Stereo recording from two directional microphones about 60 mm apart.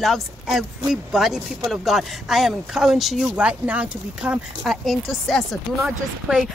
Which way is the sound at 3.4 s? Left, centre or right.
Right.